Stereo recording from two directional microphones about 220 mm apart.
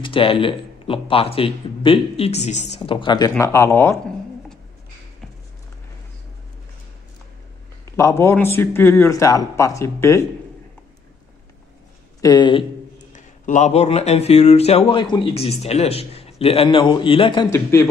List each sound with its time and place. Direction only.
0.0 s speech: 25° left (ahead or behind)
7.9 s speech: 10° left (ahead or behind)
12.2 s speech: 20° left (ahead or behind)
13.1 s speech: 35° left (ahead or behind); by 17.8 s 10° left (ahead or behind)